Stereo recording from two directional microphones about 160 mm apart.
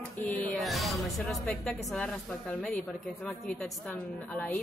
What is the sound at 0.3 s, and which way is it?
Music, 10° left (ahead or behind).